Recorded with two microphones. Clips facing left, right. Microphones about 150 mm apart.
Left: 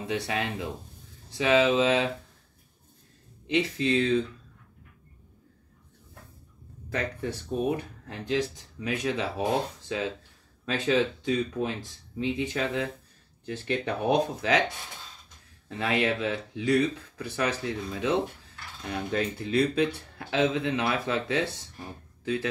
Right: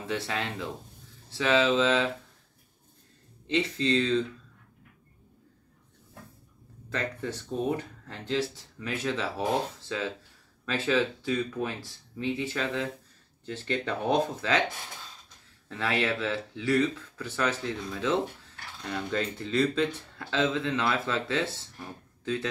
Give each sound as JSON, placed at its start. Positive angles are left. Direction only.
{"t": 0.0, "sound": "speech", "side_deg": 15}
{"t": 3.4, "sound": "speech", "side_deg": 15}
{"t": 6.9, "sound": "speech", "side_deg": 15}
{"t": 15.7, "sound": "speech", "side_deg": 15}